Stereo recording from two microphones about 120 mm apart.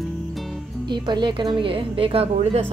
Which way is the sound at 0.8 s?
40° right (ahead or behind).